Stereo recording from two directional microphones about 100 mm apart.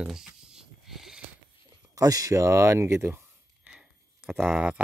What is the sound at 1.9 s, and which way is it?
Speech, 35° right (ahead or behind).